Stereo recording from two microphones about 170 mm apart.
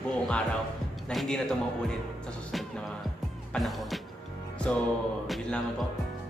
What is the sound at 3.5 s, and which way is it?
Speech, centre (ahead or behind).